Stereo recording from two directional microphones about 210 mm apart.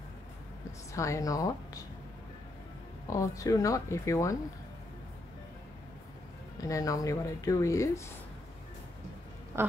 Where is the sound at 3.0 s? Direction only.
15° left (ahead or behind).